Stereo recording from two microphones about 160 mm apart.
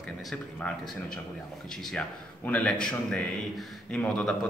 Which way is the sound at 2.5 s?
5° left (ahead or behind).